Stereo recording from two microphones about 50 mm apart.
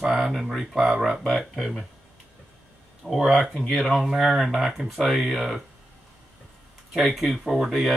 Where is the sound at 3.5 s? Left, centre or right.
Centre.